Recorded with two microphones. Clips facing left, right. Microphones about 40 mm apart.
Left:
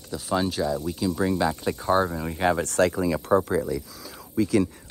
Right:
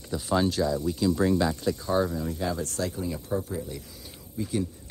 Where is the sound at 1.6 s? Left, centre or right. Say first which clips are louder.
Left 3 dB; left.